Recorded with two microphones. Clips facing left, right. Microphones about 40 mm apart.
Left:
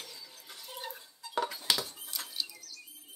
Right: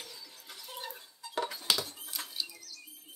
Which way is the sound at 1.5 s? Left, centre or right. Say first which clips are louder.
Even; centre.